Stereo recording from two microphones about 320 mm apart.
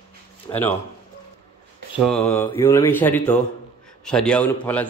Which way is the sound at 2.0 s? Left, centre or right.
Centre.